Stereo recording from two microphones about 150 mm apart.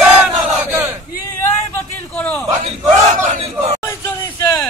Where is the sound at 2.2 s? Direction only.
10° left (ahead or behind).